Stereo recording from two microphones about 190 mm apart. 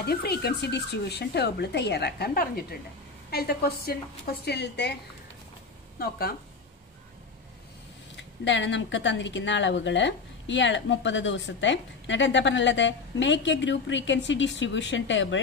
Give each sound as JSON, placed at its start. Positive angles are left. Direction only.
{"t": 0.0, "sound": "a woman's voice", "side_deg": 55}
{"t": 5.9, "sound": "a woman's voice", "side_deg": 55}
{"t": 8.2, "sound": "speech", "side_deg": 70}